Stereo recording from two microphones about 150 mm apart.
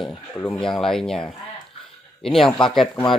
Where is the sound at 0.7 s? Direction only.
5° left (ahead or behind).